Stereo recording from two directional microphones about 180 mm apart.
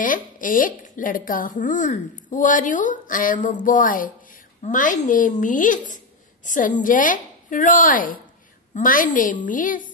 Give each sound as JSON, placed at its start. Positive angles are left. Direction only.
{"t": 0.0, "sound": "speech", "side_deg": 50}